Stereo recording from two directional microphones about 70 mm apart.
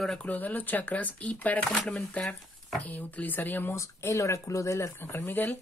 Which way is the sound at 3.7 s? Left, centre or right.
Left.